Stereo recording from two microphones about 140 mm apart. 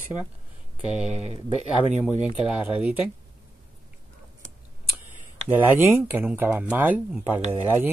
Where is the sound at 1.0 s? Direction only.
50° right (ahead or behind).